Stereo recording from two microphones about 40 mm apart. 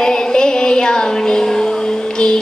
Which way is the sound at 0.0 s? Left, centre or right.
Centre.